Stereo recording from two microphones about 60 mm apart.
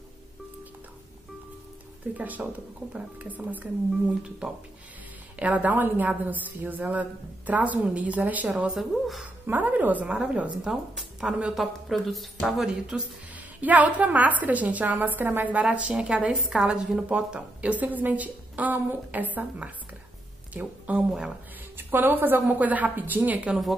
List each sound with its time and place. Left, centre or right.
2.1 s a woman's voice: right
4.2 s a woman's voice: centre
5.4 s a woman's voice: right
8.7 s speech: centre
9.5 s a woman's voice: right
10.7 s speech: centre
13.6 s a woman's voice: right
15.6 s a woman's voice: centre